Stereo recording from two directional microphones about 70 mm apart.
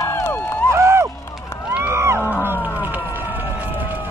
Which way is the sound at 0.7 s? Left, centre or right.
Right.